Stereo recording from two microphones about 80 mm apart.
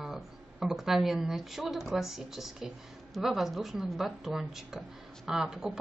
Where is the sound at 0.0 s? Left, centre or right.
Centre.